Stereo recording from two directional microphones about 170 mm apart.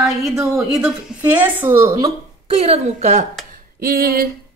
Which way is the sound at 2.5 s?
35° right (ahead or behind).